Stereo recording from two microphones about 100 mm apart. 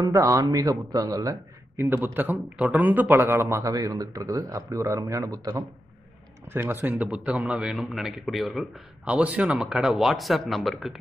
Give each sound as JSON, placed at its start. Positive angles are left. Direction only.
{"t": 0.0, "sound": "speech", "side_deg": -35}
{"t": 1.9, "sound": "a man's voice", "side_deg": -20}
{"t": 6.5, "sound": "speech", "side_deg": -20}
{"t": 7.2, "sound": "speech", "side_deg": -5}
{"t": 9.0, "sound": "speech", "side_deg": -15}